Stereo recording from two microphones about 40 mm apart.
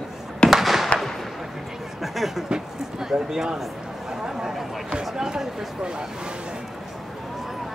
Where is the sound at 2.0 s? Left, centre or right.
Centre.